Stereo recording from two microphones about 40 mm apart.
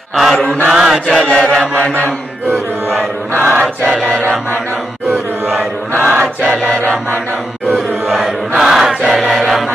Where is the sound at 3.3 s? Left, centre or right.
Right.